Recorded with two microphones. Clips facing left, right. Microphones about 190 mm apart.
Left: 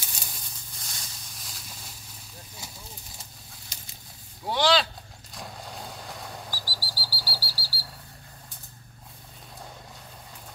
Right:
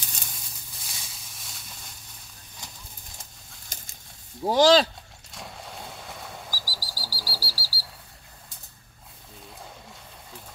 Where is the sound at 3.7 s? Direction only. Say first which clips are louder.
Right 5 dB; 50° right (ahead or behind).